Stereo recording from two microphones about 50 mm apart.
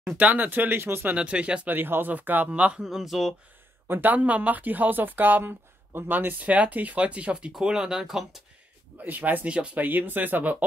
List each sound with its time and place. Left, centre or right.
0.2 s speech: right
1.1 s speech: right
1.7 s speech: right
2.8 s speech: centre
3.8 s speech: right; by 8.4 s centre
8.9 s speech: right